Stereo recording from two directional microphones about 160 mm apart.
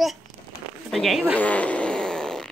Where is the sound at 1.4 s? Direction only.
10° left (ahead or behind).